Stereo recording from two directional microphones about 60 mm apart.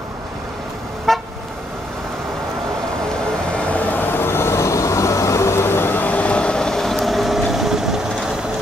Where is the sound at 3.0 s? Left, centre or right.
Centre.